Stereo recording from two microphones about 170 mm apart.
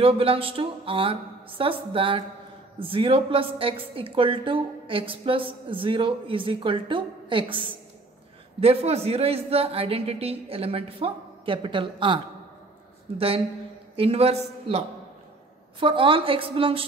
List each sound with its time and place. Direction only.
0.0 s a woman's voice: 35° right (ahead or behind)